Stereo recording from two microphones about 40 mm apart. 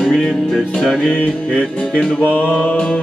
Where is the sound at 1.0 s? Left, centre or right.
Left.